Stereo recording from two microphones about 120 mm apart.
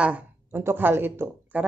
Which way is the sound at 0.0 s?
15° right (ahead or behind).